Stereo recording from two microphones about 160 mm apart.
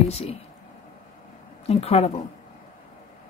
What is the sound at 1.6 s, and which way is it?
Speech, 40° left (ahead or behind).